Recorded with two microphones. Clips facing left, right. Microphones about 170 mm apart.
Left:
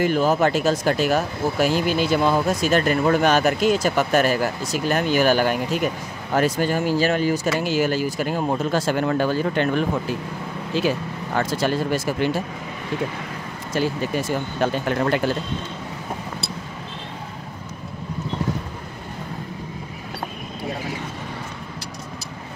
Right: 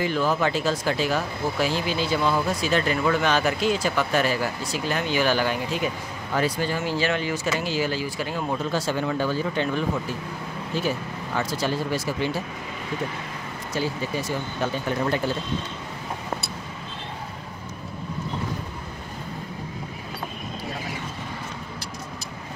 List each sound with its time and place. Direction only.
0.0 s speech: 45° left (ahead or behind)
7.6 s speech: 50° left (ahead or behind)
11.3 s speech: 60° left (ahead or behind)
14.6 s speech: 70° left (ahead or behind)